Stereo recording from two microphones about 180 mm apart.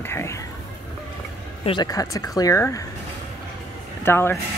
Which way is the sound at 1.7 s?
20° left (ahead or behind).